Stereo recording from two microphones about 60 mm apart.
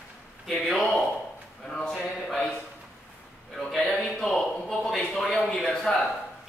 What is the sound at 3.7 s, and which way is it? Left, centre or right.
A man's voice, centre.